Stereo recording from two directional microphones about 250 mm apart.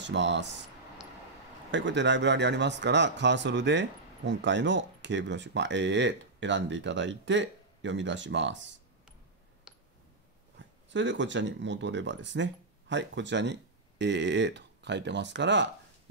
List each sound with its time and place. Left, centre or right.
0.0 s speech: right
1.7 s speech: right
9.7 s a sound: centre
10.9 s speech: right